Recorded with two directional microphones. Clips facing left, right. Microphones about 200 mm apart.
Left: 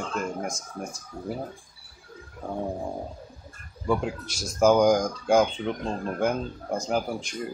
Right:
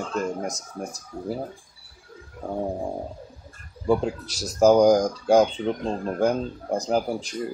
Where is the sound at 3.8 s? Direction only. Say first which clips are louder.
Right 4 dB; 35° right (ahead or behind).